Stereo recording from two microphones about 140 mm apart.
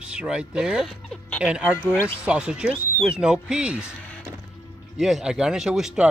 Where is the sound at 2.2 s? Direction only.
5° right (ahead or behind).